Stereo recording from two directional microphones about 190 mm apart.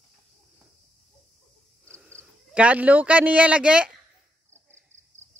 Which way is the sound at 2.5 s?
5° right (ahead or behind).